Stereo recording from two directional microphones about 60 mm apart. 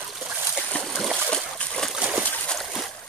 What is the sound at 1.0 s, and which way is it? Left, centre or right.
Splash, centre.